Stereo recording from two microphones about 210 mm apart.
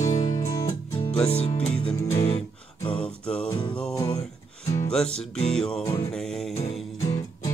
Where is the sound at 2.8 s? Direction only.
5° left (ahead or behind).